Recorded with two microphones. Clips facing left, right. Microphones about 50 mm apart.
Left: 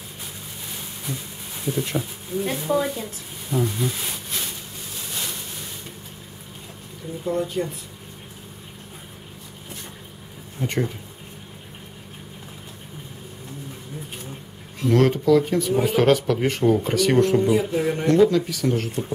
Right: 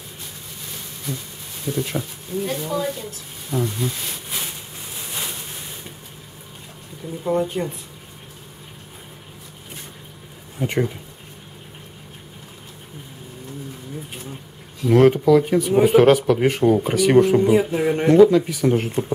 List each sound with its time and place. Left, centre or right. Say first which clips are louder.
1.0 s speech: right 2 dB; centre
2.5 s speech: left 3 dB; centre
3.0 s speech: left 1 dB; centre
7.2 s speech: right 3 dB; right
10.6 s speech: right 3 dB; centre
14.9 s speech: right 4 dB; centre